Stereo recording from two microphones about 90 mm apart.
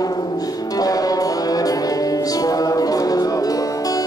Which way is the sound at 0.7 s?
45° left (ahead or behind).